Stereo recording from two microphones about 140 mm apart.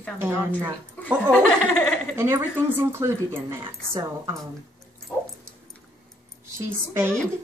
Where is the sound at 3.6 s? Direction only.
35° right (ahead or behind).